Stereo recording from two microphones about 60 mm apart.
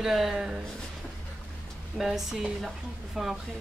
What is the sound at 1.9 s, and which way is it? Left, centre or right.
Speech, centre.